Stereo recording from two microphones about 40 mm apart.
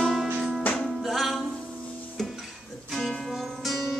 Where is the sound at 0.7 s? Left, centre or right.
Left.